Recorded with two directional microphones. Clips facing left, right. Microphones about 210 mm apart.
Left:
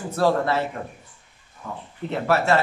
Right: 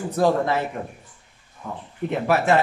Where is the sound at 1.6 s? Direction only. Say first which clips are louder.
Right 3 dB; 15° right (ahead or behind).